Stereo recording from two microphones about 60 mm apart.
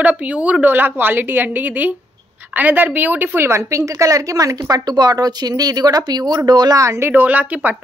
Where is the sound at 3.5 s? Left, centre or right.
Right.